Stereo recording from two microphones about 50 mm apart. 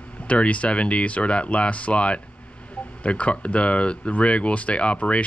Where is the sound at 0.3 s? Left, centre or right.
Left.